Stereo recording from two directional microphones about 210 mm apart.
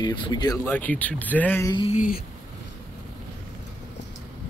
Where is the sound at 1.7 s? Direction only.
25° left (ahead or behind).